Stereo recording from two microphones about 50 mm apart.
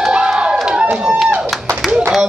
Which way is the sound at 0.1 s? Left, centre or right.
Centre.